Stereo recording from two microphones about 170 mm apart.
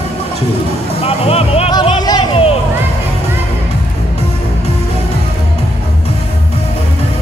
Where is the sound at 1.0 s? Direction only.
35° left (ahead or behind).